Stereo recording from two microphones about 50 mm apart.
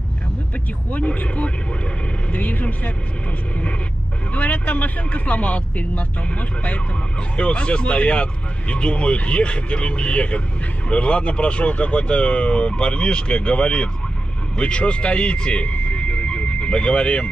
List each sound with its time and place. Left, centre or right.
0.9 s speech: left
4.3 s speech: left
7.3 s speech: left